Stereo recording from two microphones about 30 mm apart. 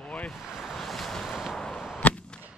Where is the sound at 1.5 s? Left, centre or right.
Centre.